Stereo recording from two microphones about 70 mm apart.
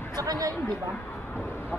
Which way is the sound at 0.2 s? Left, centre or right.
Right.